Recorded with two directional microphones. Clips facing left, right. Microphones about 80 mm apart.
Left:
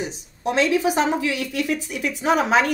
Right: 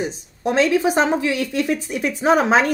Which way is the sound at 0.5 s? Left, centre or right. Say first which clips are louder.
Right 2 dB; right.